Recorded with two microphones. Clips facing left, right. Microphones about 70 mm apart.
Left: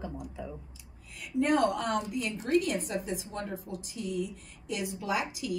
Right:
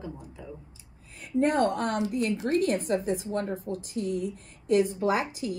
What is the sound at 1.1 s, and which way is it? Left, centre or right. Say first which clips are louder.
A woman's voice: right 2 dB; right.